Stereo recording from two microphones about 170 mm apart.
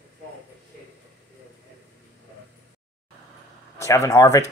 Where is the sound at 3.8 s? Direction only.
20° left (ahead or behind).